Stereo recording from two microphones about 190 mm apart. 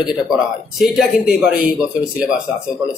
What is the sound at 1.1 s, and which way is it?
Speech, 55° left (ahead or behind).